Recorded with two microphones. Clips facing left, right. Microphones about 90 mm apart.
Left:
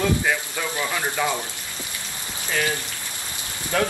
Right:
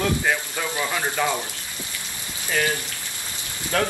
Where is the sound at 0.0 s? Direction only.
5° right (ahead or behind).